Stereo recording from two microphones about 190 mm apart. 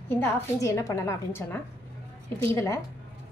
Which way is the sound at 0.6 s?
15° left (ahead or behind).